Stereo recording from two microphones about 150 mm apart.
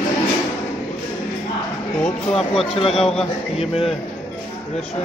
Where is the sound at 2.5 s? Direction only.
40° left (ahead or behind).